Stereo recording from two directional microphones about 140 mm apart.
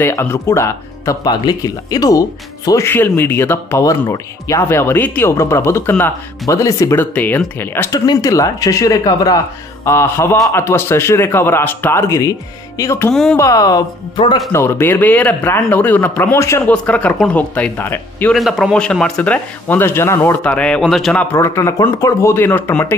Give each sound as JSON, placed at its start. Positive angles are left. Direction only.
{"t": 0.0, "sound": "a man's voice", "side_deg": 20}
{"t": 13.1, "sound": "speech", "side_deg": 5}
{"t": 13.4, "sound": "speech", "side_deg": 25}
{"t": 14.1, "sound": "speech", "side_deg": 35}
{"t": 14.5, "sound": "a man's voice", "side_deg": 15}
{"t": 18.3, "sound": "a man's voice", "side_deg": 0}
{"t": 21.2, "sound": "a man's voice", "side_deg": 15}